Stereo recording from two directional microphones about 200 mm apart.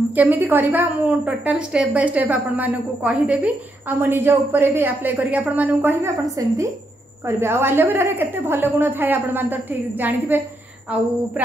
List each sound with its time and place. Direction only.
0.1 s a woman's voice: 10° right (ahead or behind)